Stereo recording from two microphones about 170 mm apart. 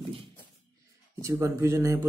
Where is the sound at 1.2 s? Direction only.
15° right (ahead or behind).